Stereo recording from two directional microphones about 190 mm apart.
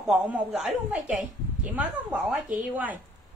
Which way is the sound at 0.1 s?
5° right (ahead or behind).